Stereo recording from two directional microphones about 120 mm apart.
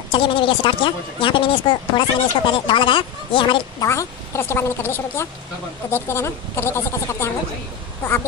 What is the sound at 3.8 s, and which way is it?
Speech, 25° left (ahead or behind).